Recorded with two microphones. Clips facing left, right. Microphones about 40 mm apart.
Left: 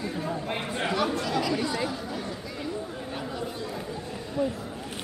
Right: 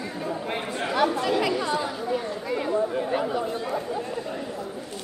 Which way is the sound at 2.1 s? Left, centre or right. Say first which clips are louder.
Right 7 dB; right.